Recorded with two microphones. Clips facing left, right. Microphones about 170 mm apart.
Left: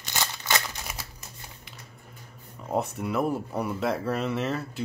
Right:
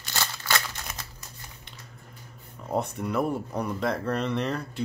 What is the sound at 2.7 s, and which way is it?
Speech, 5° left (ahead or behind).